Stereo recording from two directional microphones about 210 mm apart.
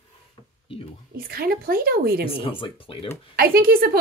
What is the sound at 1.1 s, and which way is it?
A woman's voice, 45° right (ahead or behind).